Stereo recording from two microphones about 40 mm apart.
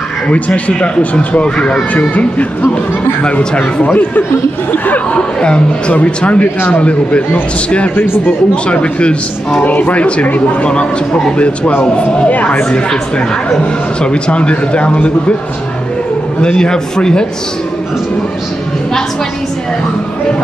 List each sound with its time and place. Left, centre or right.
0.7 s speech: left
2.0 s speech: left
3.8 s speech: left
5.4 s speech: left
8.6 s speech: left
9.7 s speech: left
10.6 s speech: left
14.1 s speech: left
16.3 s speech: left